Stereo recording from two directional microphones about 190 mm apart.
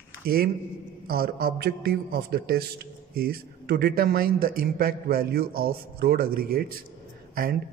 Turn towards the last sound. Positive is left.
turn(degrees=-50)  # may be behind; listen again after turning